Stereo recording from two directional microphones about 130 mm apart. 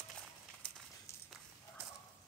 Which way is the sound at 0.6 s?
10° left (ahead or behind).